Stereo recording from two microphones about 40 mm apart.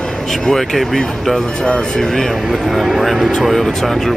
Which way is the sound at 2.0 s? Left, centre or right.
Centre.